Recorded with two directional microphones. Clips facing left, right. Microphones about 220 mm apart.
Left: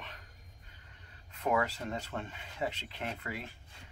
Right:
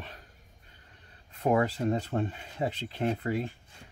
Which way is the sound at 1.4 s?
35° right (ahead or behind).